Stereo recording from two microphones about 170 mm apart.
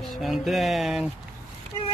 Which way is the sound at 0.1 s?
Centre (ahead or behind).